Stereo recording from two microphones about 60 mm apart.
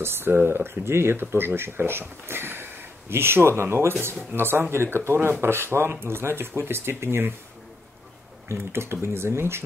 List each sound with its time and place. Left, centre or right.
0.0 s speech: right
8.5 s speech: right